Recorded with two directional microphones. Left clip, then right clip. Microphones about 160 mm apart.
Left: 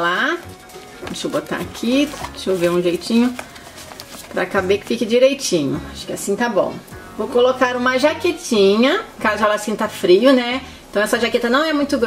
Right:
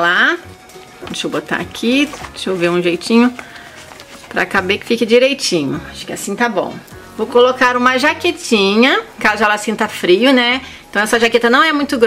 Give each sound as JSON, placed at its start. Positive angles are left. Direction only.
{"t": 0.0, "sound": "music", "side_deg": -30}
{"t": 1.5, "sound": "speech", "side_deg": -25}
{"t": 4.4, "sound": "speech", "side_deg": -35}